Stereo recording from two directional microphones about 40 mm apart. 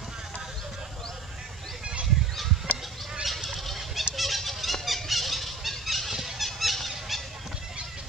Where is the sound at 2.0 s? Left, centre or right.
Centre.